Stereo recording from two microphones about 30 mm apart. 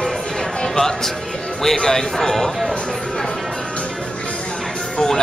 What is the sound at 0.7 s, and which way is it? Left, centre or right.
Speech, centre.